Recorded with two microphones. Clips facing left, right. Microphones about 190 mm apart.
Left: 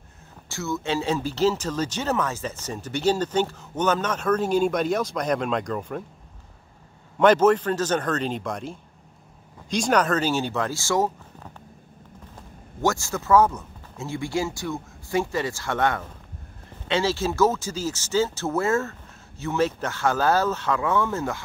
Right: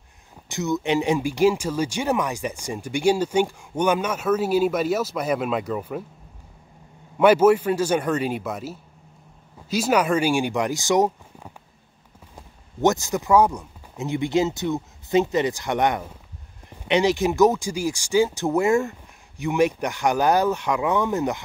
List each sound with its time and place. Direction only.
0.5 s speech: 20° right (ahead or behind)
7.2 s speech: 10° right (ahead or behind)
12.8 s speech: 20° right (ahead or behind)